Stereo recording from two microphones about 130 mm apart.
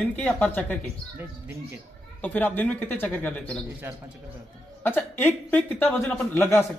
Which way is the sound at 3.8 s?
15° right (ahead or behind).